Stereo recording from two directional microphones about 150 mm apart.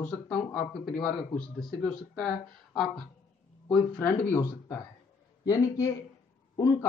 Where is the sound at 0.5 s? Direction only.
5° left (ahead or behind).